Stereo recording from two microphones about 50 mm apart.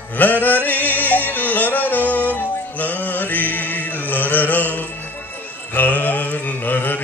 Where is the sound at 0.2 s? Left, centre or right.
Left.